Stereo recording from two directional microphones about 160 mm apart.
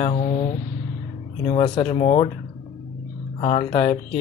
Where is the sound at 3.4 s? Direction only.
35° left (ahead or behind).